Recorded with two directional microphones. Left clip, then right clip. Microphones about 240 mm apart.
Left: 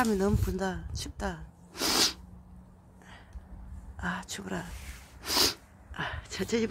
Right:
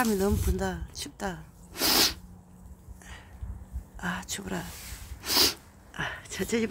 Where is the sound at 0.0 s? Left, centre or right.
Centre.